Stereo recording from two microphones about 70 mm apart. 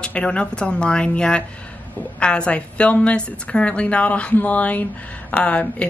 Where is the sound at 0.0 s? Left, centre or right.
Centre.